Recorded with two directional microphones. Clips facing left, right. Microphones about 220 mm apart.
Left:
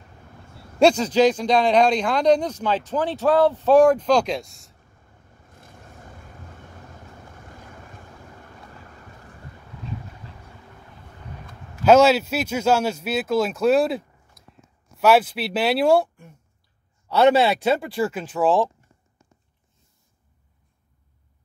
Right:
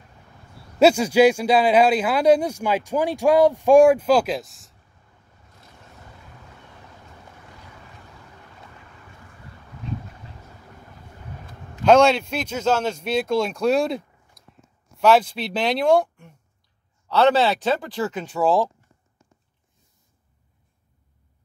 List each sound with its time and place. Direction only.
0.7 s a man's voice: 5° right (ahead or behind)
5.5 s vehicle: 50° left (ahead or behind)
7.5 s boat: 50° left (ahead or behind)
11.8 s speech: 5° left (ahead or behind)